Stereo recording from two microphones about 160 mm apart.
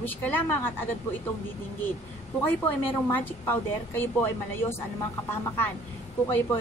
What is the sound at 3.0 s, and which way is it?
A woman's voice, 15° left (ahead or behind).